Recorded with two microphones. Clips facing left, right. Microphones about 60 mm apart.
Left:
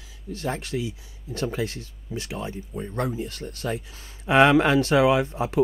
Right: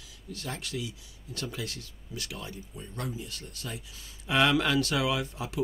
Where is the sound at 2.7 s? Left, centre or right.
Left.